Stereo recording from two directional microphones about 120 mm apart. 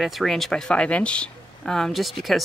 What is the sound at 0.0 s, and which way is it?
Speech, centre (ahead or behind).